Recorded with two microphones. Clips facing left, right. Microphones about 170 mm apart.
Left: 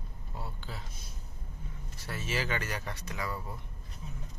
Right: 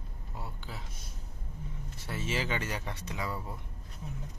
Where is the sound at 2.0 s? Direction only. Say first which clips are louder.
Right 1 dB; 20° right (ahead or behind).